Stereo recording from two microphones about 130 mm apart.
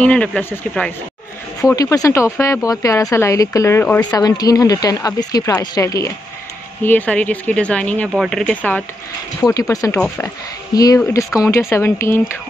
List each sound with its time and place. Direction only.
0.0 s speech: 10° left (ahead or behind)
1.6 s speech: 25° left (ahead or behind)
6.8 s speech: 15° left (ahead or behind)
9.4 s speech: 25° left (ahead or behind)